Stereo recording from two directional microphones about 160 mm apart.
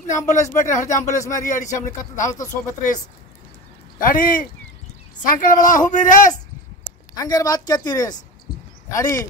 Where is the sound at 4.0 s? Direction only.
60° left (ahead or behind).